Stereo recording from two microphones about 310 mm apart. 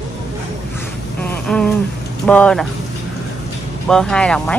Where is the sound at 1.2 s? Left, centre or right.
Centre.